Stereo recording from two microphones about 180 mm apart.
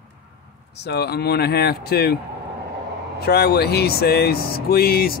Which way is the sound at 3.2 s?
60° left (ahead or behind).